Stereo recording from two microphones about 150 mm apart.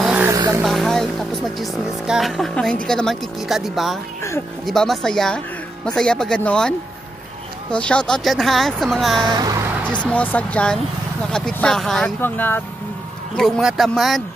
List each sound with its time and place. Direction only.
0.0 s vehicle: 10° right (ahead or behind)
0.3 s vehicle: 20° right (ahead or behind)
0.6 s speech: centre (ahead or behind)
7.7 s speech: 5° left (ahead or behind)
9.3 s vehicle: 25° right (ahead or behind)
9.9 s speech: 10° left (ahead or behind)
12.2 s speech: 15° left (ahead or behind)
13.4 s speech: centre (ahead or behind)